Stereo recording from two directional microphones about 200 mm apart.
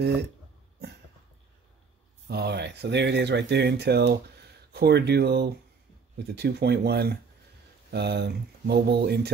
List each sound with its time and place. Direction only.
0.0 s speech: 55° right (ahead or behind)
0.8 s a sound: 55° right (ahead or behind)
2.2 s speech: 55° right (ahead or behind)